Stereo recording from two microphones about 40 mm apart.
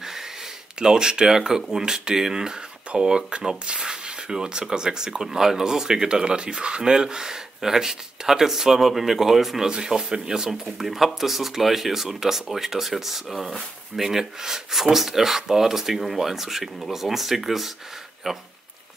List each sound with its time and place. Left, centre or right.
0.0 s a sound: centre
0.7 s speech: centre
9.7 s speech: centre
10.5 s speech: centre